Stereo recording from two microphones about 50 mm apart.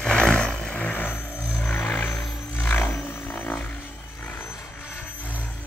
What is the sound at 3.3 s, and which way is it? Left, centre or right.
Music, left.